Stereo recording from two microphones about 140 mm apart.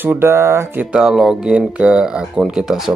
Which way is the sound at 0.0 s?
15° right (ahead or behind).